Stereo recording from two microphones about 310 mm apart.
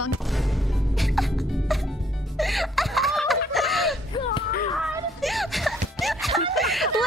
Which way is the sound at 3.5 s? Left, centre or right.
Centre.